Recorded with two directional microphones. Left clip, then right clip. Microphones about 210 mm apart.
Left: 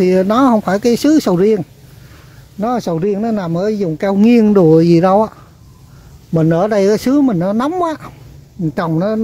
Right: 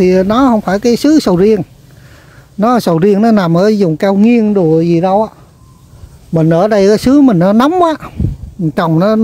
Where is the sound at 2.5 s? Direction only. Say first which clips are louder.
Right 7 dB; 30° right (ahead or behind).